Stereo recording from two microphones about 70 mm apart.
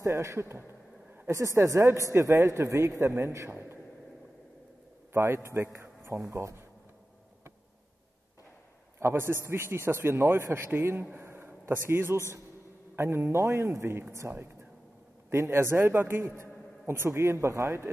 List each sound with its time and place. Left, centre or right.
0.0 s a man's voice: right
5.1 s a man's voice: right
9.0 s a man's voice: right